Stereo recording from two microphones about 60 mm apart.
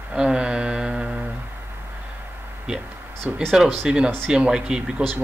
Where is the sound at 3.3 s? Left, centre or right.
Centre.